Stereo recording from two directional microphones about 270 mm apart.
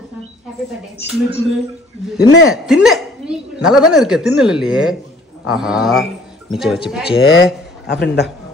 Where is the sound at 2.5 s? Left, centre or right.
Centre.